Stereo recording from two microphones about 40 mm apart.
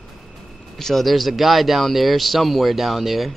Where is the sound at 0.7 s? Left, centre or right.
Centre.